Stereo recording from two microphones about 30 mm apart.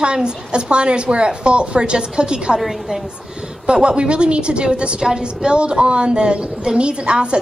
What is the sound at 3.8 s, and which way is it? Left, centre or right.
A woman's voice, right.